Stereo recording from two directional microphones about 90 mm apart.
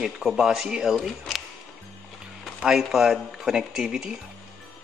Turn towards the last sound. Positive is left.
turn(degrees=-5)  # may be behind; listen again after turning